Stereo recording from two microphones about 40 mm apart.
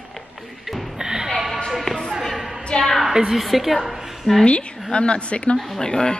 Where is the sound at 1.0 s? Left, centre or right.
Centre.